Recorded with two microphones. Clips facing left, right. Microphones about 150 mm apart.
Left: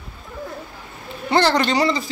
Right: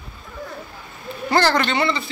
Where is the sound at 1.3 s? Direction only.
20° left (ahead or behind).